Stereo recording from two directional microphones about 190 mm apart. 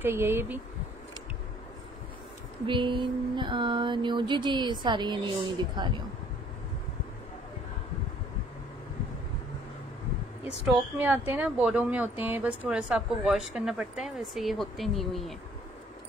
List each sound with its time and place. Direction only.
0.0 s speech: 10° right (ahead or behind)
2.6 s a sound: 25° right (ahead or behind)
10.7 s speech: 10° right (ahead or behind)